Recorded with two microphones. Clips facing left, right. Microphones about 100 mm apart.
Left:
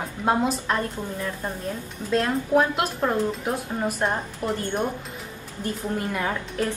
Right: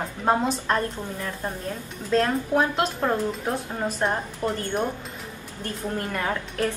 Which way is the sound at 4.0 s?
Centre (ahead or behind).